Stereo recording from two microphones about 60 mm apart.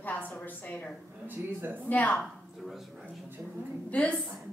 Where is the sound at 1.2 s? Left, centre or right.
Right.